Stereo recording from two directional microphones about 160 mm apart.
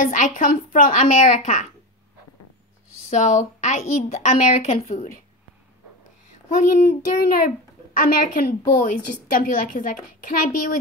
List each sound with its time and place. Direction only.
0.0 s a woman's voice: 55° left (ahead or behind)
3.1 s a woman's voice: 50° left (ahead or behind)
6.8 s a child's voice: 80° left
8.0 s a woman's voice: 60° left (ahead or behind)